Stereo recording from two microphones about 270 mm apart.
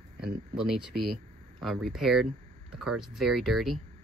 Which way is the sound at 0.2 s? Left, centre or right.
Centre.